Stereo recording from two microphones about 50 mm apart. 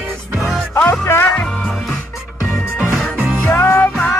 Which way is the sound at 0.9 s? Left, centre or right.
Left.